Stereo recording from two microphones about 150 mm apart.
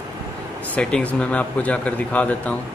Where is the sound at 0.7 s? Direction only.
5° left (ahead or behind).